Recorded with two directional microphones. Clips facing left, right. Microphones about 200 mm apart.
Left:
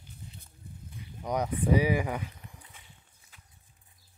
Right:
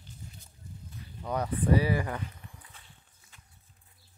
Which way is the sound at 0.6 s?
60° left (ahead or behind).